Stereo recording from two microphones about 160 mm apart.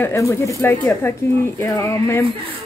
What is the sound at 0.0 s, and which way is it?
A woman's voice, 20° left (ahead or behind).